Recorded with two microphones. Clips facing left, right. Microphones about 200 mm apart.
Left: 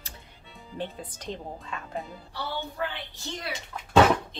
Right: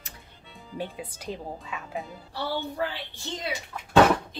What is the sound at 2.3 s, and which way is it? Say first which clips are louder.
A woman's voice: right 3 dB; 35° right (ahead or behind).